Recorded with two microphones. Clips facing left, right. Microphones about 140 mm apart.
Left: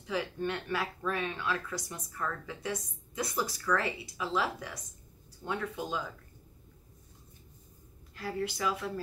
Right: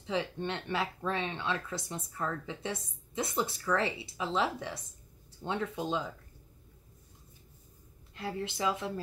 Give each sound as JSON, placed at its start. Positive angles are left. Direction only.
{"t": 0.0, "sound": "speech", "side_deg": -25}
{"t": 8.1, "sound": "speech", "side_deg": -25}